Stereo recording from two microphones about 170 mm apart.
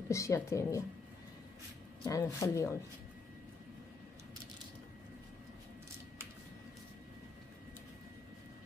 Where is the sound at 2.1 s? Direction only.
20° left (ahead or behind).